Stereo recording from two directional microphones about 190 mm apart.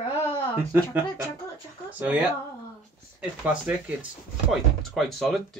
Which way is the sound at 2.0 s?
10° right (ahead or behind).